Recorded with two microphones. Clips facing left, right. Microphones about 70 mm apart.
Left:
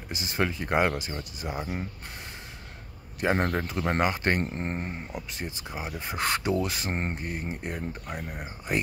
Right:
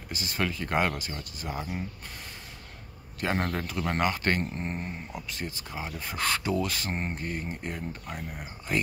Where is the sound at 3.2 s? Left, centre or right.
Centre.